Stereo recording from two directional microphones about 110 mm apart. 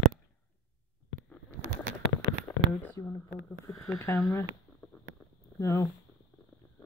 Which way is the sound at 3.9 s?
30° left (ahead or behind).